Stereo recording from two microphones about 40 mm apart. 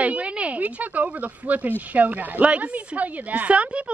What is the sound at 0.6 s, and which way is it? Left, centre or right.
Speech, right.